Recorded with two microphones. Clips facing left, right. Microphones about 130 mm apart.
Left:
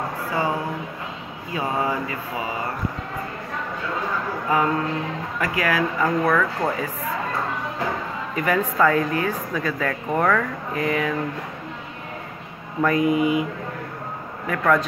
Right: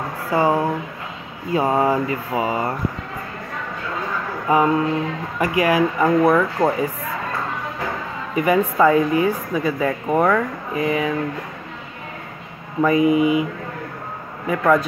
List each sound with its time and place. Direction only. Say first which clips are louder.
0.3 s speech: right 8 dB; 30° right (ahead or behind)
4.5 s speech: right 5 dB; 20° right (ahead or behind)
8.4 s speech: right 4 dB; 15° right (ahead or behind)
12.8 s speech: right 4 dB; 5° right (ahead or behind)
13.1 s speech: right 3 dB; 45° left (ahead or behind)
14.5 s speech: right 3 dB; 10° right (ahead or behind)